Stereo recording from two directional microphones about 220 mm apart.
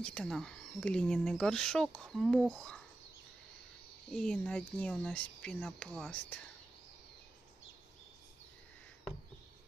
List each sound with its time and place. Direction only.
0.0 s speech: centre (ahead or behind)
4.1 s speech: 5° left (ahead or behind)